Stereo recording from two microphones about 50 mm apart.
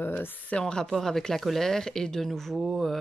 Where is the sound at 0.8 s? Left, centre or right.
Centre.